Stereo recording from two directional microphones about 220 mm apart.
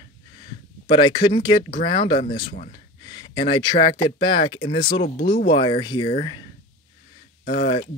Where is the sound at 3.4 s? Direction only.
20° left (ahead or behind).